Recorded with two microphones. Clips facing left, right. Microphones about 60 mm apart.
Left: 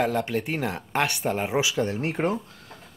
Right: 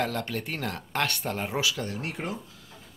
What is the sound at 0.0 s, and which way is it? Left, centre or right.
Speech, centre.